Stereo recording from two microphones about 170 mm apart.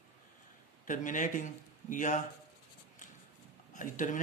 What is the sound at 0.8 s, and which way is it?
Speech, 50° left (ahead or behind).